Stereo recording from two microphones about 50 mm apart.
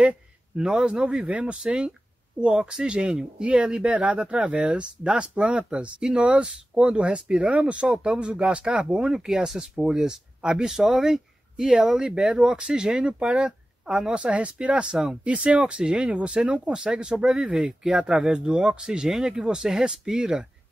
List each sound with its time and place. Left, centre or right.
0.6 s speech: centre